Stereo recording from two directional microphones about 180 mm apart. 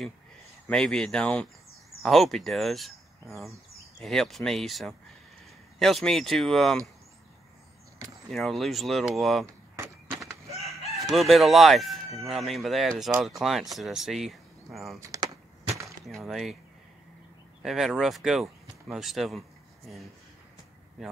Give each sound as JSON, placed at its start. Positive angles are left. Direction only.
{"t": 0.7, "sound": "speech", "side_deg": 5}
{"t": 4.0, "sound": "speech", "side_deg": 0}
{"t": 8.3, "sound": "speech", "side_deg": 0}
{"t": 10.1, "sound": "chicken", "side_deg": 0}
{"t": 12.3, "sound": "speech", "side_deg": 0}
{"t": 15.0, "sound": "speech", "side_deg": -20}
{"t": 16.1, "sound": "speech", "side_deg": 0}
{"t": 17.6, "sound": "speech", "side_deg": 0}